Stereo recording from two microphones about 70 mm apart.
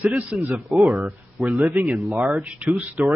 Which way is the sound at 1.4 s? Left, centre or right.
Right.